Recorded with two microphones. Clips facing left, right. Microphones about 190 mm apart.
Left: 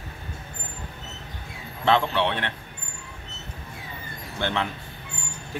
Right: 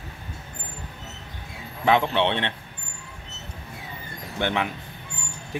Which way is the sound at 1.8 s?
20° right (ahead or behind).